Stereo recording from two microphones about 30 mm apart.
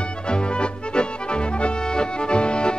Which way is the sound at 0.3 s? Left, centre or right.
Left.